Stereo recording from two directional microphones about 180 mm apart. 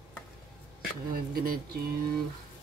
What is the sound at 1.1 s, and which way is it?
Speech, 55° right (ahead or behind).